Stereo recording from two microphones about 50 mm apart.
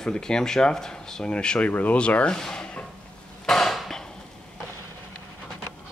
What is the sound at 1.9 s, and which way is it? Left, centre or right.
Speech, left.